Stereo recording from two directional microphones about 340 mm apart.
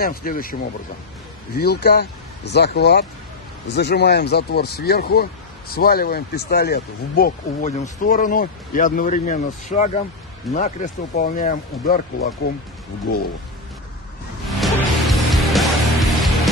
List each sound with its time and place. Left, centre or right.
0.0 s speech: left
1.6 s speech: left
14.5 s music: centre